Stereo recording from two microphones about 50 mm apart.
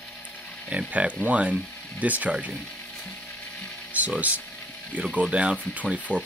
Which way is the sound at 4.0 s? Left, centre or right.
Right.